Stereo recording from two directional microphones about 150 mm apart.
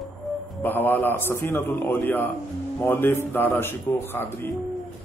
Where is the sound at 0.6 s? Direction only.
15° left (ahead or behind).